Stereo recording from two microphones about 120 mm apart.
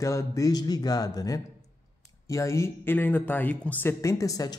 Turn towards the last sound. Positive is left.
turn(degrees=30)  # may be behind; listen again after turning